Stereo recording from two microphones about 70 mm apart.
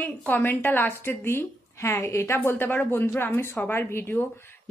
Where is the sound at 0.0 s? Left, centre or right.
Left.